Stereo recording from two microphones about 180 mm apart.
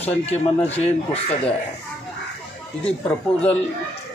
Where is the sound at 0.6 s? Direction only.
35° left (ahead or behind).